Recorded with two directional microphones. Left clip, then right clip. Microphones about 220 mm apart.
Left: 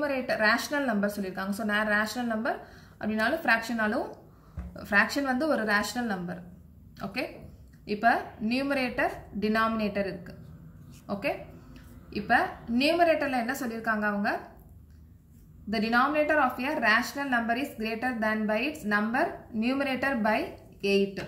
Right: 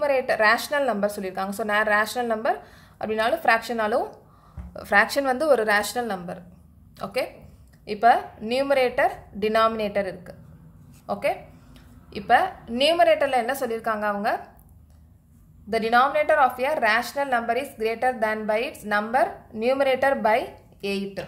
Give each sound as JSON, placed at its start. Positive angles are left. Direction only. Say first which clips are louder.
{"t": 0.0, "sound": "a woman's voice", "louder": "right 6 dB", "side_deg": -50}
{"t": 8.0, "sound": "a woman's voice", "louder": "right 7 dB", "side_deg": -50}
{"t": 12.3, "sound": "a woman's voice", "louder": "right 6 dB", "side_deg": -50}
{"t": 15.7, "sound": "a woman's voice", "louder": "right 6 dB", "side_deg": -50}